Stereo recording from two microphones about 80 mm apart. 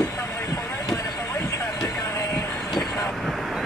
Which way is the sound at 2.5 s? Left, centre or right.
Centre.